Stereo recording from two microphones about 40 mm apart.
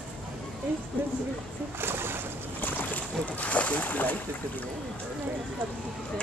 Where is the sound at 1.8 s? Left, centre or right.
Right.